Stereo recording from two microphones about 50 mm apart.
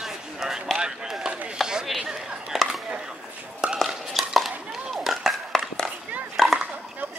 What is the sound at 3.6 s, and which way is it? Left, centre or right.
Stir, centre.